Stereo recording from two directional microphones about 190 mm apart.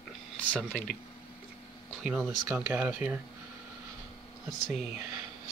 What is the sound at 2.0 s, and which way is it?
Speech, centre (ahead or behind).